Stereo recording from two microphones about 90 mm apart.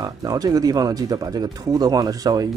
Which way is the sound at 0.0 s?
45° right (ahead or behind).